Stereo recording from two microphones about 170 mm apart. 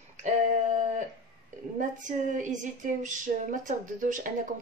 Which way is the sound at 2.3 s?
50° right (ahead or behind).